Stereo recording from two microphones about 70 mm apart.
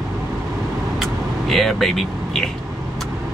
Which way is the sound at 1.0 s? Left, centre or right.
Centre.